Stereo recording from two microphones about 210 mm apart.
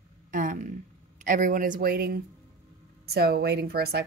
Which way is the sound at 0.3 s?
40° right (ahead or behind).